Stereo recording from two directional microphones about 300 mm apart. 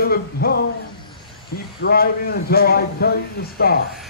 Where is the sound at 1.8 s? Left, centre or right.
Left.